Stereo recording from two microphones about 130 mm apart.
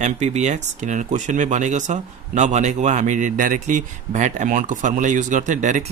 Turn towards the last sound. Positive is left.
turn(degrees=-75)  # may be behind; listen again after turning